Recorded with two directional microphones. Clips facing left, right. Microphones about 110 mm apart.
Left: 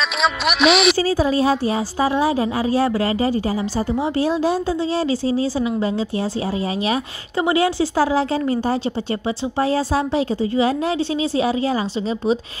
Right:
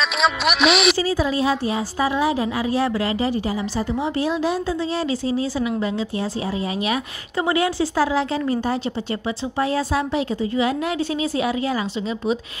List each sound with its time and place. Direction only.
0.2 s speech: centre (ahead or behind)
0.9 s a woman's voice: 35° left (ahead or behind)
6.9 s a woman's voice: 25° left (ahead or behind)